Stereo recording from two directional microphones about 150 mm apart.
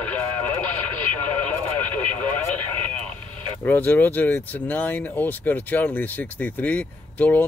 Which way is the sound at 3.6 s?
10° left (ahead or behind).